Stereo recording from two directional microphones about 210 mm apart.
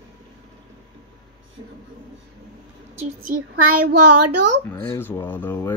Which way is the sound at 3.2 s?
40° right (ahead or behind).